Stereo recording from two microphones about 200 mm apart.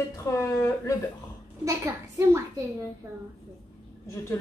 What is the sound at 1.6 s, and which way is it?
Speech, 15° right (ahead or behind).